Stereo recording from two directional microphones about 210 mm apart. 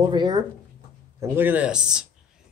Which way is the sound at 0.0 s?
20° right (ahead or behind).